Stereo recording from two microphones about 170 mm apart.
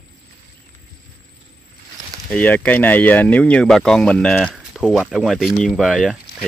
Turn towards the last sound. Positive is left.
turn(degrees=0)  # may be behind; listen again after turning